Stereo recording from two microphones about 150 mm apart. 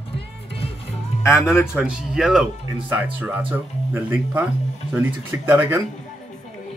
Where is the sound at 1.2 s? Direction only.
15° left (ahead or behind).